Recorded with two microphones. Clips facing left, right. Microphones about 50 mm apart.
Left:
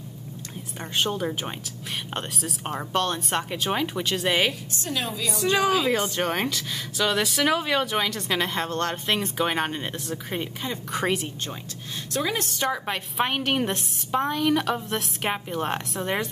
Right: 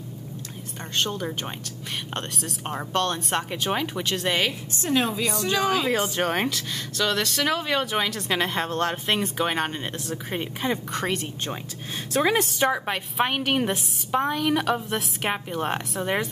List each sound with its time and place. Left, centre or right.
0.9 s a woman's voice: centre
4.8 s a woman's voice: right
5.6 s a woman's voice: centre
7.0 s a woman's voice: centre
12.1 s a woman's voice: right
12.4 s a woman's voice: centre